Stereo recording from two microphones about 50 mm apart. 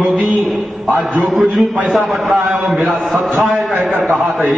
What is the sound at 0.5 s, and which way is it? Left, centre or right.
A man's voice, centre.